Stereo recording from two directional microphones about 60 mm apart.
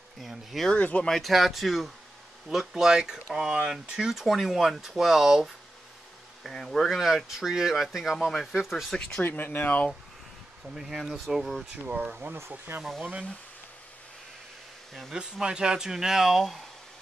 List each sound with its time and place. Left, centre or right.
0.2 s speech: centre
0.7 s speech: left
1.0 s speech: centre
4.1 s speech: centre
6.4 s speech: centre
9.2 s speech: left
10.7 s speech: centre
11.7 s speech: right
12.4 s speech: right
13.0 s speech: right
15.1 s speech: centre